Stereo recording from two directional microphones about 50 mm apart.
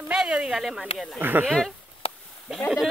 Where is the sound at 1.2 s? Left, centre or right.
Right.